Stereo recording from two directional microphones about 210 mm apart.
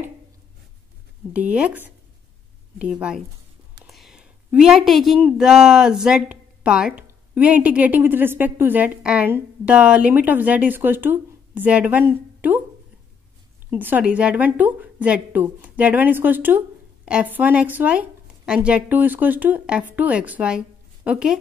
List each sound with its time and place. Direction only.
1.3 s a woman's voice: 5° right (ahead or behind)
13.7 s a woman's voice: 10° right (ahead or behind)